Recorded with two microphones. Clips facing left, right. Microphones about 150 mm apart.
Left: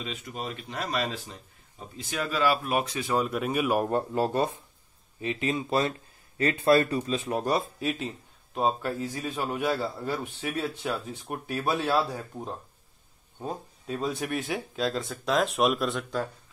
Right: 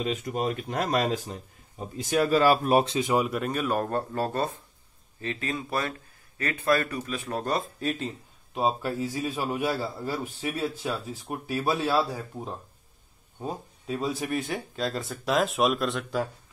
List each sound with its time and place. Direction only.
0.0 s speech: 45° right (ahead or behind); by 3.3 s 20° right (ahead or behind)
3.3 s a man's voice: 5° left (ahead or behind); by 7.2 s 25° left (ahead or behind)
7.2 s a man's voice: 10° left (ahead or behind)